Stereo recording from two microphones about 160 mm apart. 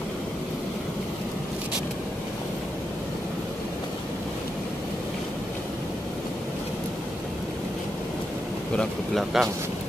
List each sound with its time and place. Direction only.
8.7 s speech: centre (ahead or behind)